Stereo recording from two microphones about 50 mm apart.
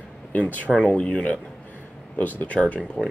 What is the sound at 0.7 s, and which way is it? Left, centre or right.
Speech, left.